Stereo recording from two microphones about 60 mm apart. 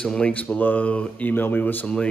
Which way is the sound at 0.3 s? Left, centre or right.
Left.